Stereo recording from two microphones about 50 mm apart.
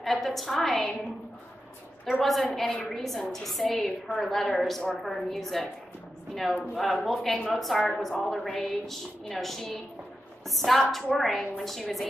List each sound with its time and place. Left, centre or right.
0.0 s a woman's voice: centre
2.1 s a woman's voice: centre
2.6 s a woman's voice: centre
2.9 s a woman's voice: centre
6.7 s a woman's voice: centre